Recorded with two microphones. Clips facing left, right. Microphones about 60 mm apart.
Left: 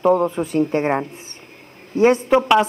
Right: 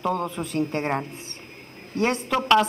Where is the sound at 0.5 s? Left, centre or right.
Centre.